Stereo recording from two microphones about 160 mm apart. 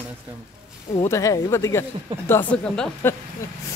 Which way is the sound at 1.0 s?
20° left (ahead or behind).